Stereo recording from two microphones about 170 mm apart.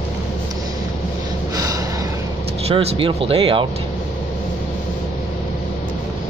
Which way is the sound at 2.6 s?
35° right (ahead or behind).